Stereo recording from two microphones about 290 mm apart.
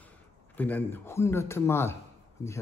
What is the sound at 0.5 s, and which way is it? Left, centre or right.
Speech, centre.